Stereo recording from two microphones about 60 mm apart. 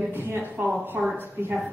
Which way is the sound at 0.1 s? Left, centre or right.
Right.